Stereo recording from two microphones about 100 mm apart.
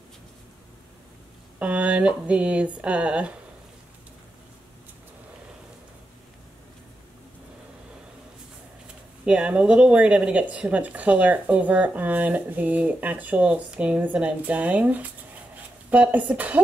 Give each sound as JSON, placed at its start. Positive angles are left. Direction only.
{"t": 1.6, "sound": "speech", "side_deg": -10}
{"t": 9.2, "sound": "speech", "side_deg": -10}